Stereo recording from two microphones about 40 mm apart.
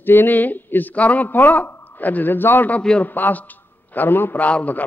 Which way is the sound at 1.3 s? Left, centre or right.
Left.